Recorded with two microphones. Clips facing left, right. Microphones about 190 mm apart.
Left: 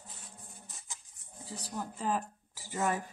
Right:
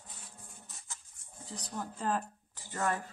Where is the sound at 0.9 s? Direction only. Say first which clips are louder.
Even; 15° left (ahead or behind).